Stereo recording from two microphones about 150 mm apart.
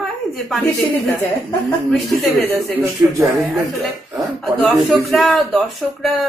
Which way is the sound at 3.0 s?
15° right (ahead or behind).